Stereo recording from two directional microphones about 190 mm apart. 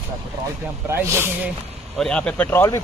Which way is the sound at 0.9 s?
10° right (ahead or behind).